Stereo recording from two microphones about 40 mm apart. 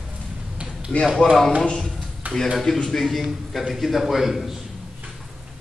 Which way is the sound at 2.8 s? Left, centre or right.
Centre.